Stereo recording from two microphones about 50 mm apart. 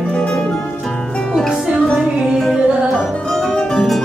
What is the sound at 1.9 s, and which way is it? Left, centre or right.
Music, centre.